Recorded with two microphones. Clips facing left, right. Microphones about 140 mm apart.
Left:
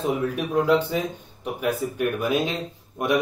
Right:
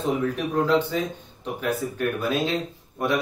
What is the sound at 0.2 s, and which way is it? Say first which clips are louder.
Speech: even; 10° left (ahead or behind).